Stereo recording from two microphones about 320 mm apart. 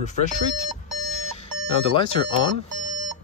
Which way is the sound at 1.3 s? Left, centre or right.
Centre.